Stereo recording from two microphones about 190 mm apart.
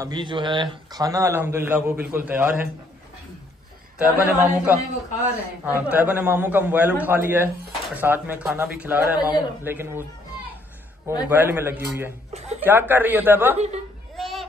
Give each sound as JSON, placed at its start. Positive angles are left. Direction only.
{"t": 0.0, "sound": "a man's voice", "side_deg": -25}
{"t": 4.0, "sound": "a man's voice", "side_deg": -10}
{"t": 11.2, "sound": "a man's voice", "side_deg": -10}
{"t": 12.3, "sound": "speech", "side_deg": -35}
{"t": 12.6, "sound": "a man's voice", "side_deg": -10}
{"t": 14.1, "sound": "children playing", "side_deg": 0}